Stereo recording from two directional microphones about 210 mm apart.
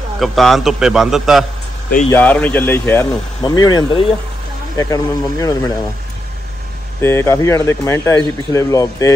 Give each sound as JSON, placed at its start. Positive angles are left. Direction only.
{"t": 0.2, "sound": "a man's voice", "side_deg": 0}
{"t": 7.0, "sound": "speech", "side_deg": 10}